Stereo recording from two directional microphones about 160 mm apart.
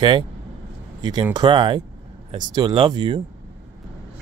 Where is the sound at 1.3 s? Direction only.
30° right (ahead or behind).